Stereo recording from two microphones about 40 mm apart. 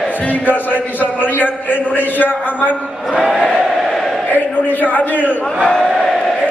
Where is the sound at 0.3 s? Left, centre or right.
Left.